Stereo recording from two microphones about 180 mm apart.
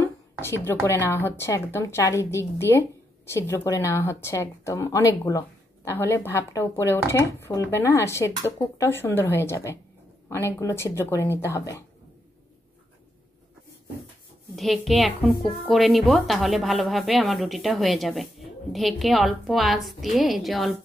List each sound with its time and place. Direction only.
0.0 s speech: 15° left (ahead or behind)
14.5 s a woman's voice: centre (ahead or behind)